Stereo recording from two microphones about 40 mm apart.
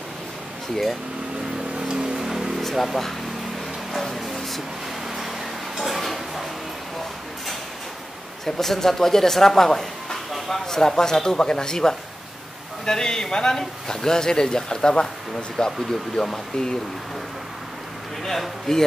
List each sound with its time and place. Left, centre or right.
1.8 s vehicle: centre
2.6 s speech: centre
3.9 s music: centre
5.8 s a sound: centre
8.5 s speech: centre
18.2 s speech: centre